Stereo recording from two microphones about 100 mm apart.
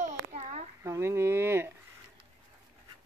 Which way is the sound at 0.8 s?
25° right (ahead or behind).